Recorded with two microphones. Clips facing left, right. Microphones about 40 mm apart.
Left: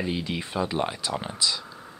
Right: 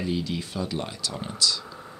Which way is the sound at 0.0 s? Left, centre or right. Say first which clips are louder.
Even; left.